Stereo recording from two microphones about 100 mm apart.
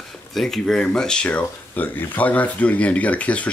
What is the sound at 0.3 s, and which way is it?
Speech, 5° left (ahead or behind).